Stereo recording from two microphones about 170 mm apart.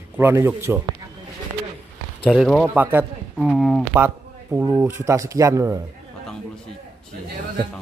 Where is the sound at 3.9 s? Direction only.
10° right (ahead or behind).